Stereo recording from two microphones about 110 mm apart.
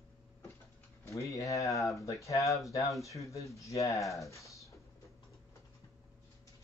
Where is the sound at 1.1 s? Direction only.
30° left (ahead or behind).